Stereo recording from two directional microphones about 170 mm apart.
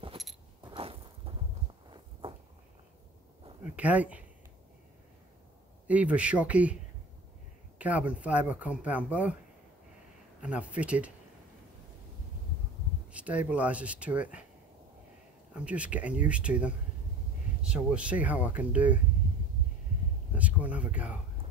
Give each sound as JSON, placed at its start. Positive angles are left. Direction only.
{"t": 0.7, "sound": "a sound", "side_deg": -35}
{"t": 3.6, "sound": "speech", "side_deg": -10}
{"t": 5.9, "sound": "speech", "side_deg": -10}
{"t": 7.8, "sound": "speech", "side_deg": -10}
{"t": 10.4, "sound": "speech", "side_deg": -5}
{"t": 13.1, "sound": "speech", "side_deg": -10}
{"t": 15.5, "sound": "speech", "side_deg": -5}
{"t": 20.3, "sound": "speech", "side_deg": -10}